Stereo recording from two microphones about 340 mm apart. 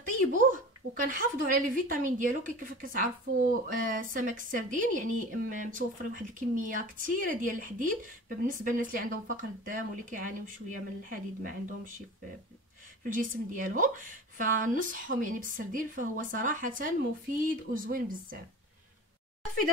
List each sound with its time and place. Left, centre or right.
0.3 s speech: right
13.1 s speech: right